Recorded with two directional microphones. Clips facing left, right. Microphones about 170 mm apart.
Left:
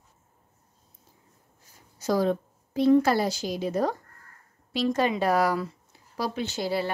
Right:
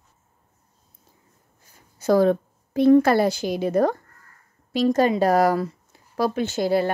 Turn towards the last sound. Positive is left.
turn(degrees=-50)  # may be behind; listen again after turning